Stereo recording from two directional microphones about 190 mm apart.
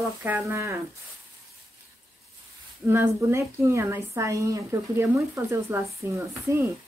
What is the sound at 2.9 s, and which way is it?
A woman's voice, 10° right (ahead or behind).